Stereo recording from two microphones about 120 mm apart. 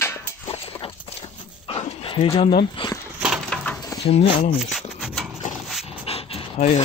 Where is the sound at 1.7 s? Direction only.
50° left (ahead or behind).